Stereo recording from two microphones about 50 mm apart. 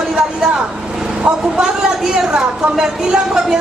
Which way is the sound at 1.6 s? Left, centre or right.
Centre.